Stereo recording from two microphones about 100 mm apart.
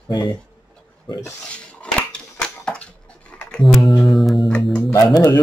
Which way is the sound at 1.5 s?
10° left (ahead or behind).